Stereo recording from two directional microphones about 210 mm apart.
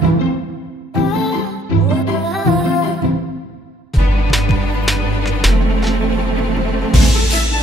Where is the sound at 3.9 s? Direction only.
Centre (ahead or behind).